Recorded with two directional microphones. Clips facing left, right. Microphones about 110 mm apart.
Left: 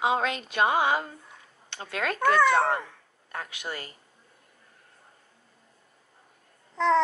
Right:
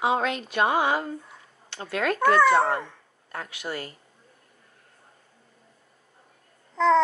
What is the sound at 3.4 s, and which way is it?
Music, 20° left (ahead or behind).